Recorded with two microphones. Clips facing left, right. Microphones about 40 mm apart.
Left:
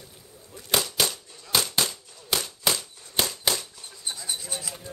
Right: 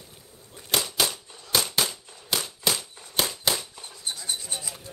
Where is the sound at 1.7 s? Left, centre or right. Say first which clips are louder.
Even; centre.